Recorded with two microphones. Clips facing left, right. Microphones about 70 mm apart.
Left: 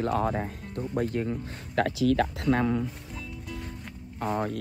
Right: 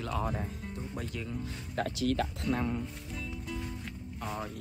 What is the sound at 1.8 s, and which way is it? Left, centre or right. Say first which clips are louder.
Speech: left 7 dB; left.